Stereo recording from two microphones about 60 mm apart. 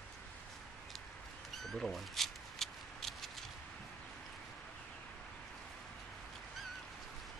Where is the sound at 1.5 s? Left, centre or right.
Centre.